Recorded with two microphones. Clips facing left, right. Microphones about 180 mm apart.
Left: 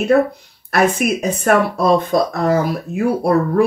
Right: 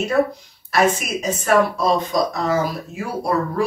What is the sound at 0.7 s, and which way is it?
Speech, 60° left (ahead or behind).